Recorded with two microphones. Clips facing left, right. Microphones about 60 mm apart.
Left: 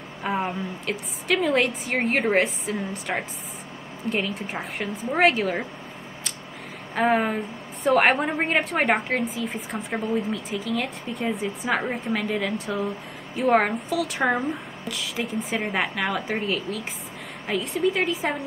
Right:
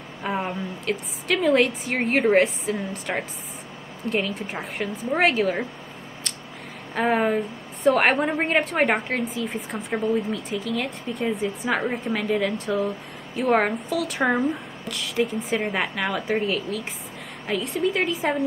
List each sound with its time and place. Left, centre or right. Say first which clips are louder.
0.2 s a woman's voice: left 1 dB; centre
7.0 s a woman's voice: right 1 dB; centre